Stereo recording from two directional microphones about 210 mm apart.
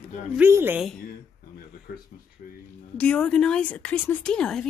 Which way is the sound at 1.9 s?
45° left (ahead or behind).